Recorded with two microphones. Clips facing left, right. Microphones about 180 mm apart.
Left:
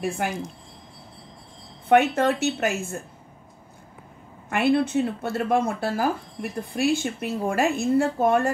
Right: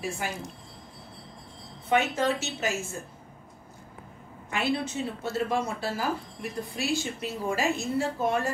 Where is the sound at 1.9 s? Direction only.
60° left (ahead or behind).